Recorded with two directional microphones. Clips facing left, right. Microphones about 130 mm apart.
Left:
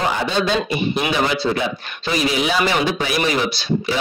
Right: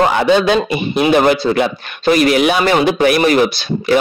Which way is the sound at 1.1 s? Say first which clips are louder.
Right 11 dB; 55° right (ahead or behind).